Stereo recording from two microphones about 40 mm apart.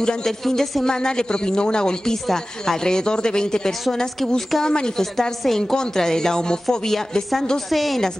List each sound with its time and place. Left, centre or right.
0.0 s a woman's voice: centre
7.5 s a woman's voice: centre